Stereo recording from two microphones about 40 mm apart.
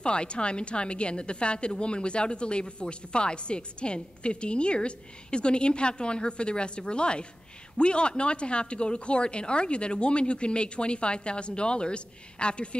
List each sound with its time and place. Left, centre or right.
0.0 s a woman's voice: left